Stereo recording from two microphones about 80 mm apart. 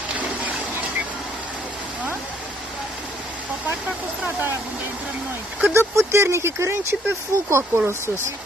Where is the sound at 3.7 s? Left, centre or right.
Right.